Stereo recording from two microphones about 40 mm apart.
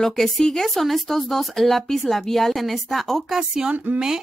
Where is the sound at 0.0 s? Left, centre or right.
Centre.